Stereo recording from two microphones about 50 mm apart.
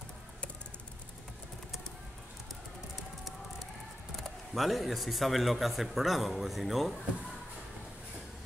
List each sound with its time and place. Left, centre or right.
4.2 s speech: centre